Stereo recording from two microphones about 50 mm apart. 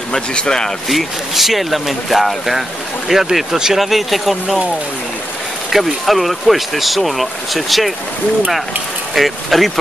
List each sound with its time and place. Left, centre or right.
0.1 s speech: centre
0.8 s speech: centre
5.7 s speech: centre
9.1 s speech: centre